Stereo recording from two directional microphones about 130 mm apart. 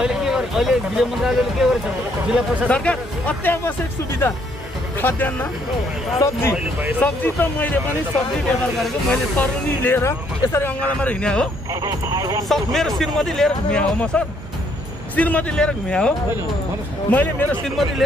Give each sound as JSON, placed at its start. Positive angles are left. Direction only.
{"t": 0.0, "sound": "speech", "side_deg": -5}
{"t": 2.7, "sound": "speech", "side_deg": 10}
{"t": 5.0, "sound": "speech", "side_deg": 15}
{"t": 6.5, "sound": "speech", "side_deg": -10}
{"t": 7.0, "sound": "speech", "side_deg": 15}
{"t": 9.4, "sound": "speech", "side_deg": 15}
{"t": 11.7, "sound": "speech", "side_deg": -25}
{"t": 12.4, "sound": "speech", "side_deg": 0}
{"t": 17.1, "sound": "speech", "side_deg": 15}
{"t": 17.6, "sound": "speech", "side_deg": 0}